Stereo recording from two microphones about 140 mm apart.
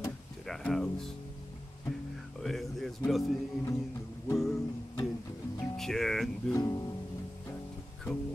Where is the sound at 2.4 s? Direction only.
Centre (ahead or behind).